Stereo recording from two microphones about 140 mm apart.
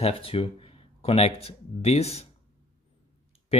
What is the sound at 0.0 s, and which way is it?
Speech, 40° left (ahead or behind).